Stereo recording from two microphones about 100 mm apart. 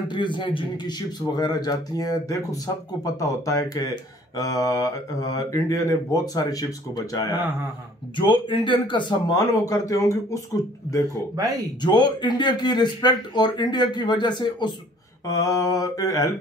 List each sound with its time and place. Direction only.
0.1 s speech: 50° left (ahead or behind)
0.9 s speech: 40° left (ahead or behind)
8.2 s speech: 55° left (ahead or behind)
9.3 s speech: 30° left (ahead or behind)
11.3 s speech: 40° right (ahead or behind)
11.8 s speech: 45° left (ahead or behind)
15.2 s speech: 35° left (ahead or behind)